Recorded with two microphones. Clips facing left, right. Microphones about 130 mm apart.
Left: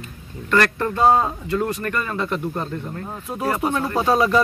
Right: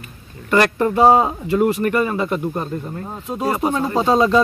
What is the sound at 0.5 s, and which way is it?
Speech, 15° right (ahead or behind).